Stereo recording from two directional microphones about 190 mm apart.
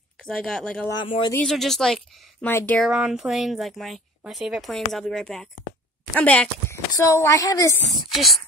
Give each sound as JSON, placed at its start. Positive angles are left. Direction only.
{"t": 0.2, "sound": "speech", "side_deg": 5}
{"t": 0.8, "sound": "speech", "side_deg": 25}
{"t": 1.3, "sound": "speech", "side_deg": 5}
{"t": 2.9, "sound": "speech", "side_deg": -5}
{"t": 8.1, "sound": "speech", "side_deg": 0}